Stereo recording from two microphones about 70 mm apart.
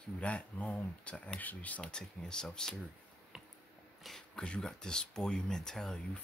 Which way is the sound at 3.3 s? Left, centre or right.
Centre.